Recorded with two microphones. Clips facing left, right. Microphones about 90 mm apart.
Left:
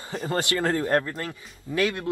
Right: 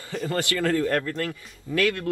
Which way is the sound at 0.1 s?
35° left (ahead or behind).